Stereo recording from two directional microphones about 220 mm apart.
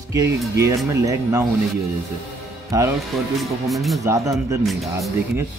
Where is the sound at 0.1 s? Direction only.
15° right (ahead or behind).